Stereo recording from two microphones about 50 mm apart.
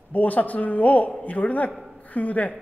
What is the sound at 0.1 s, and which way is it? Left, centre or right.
A woman's voice, left.